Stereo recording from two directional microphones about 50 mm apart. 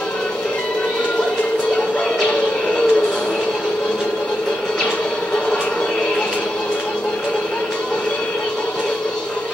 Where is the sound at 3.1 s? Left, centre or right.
Centre.